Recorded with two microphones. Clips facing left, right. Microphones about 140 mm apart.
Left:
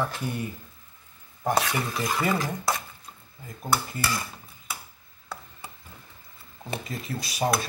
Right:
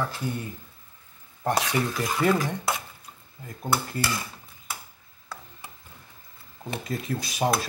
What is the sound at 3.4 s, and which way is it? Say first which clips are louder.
Speech: even; centre (ahead or behind).